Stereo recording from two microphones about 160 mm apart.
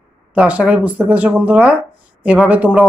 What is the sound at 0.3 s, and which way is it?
Speech, 10° right (ahead or behind).